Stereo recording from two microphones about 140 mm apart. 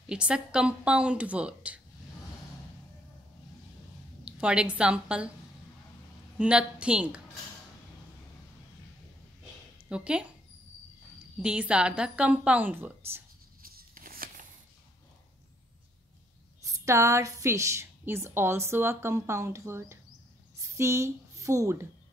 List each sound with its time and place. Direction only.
0.0 s a woman's voice: 5° right (ahead or behind)
4.2 s a woman's voice: 5° right (ahead or behind)
6.3 s a woman's voice: 10° right (ahead or behind)
9.8 s speech: 5° right (ahead or behind)
11.3 s a woman's voice: 5° right (ahead or behind)
13.6 s a sound: 90° right
16.6 s a woman's voice: 20° right (ahead or behind)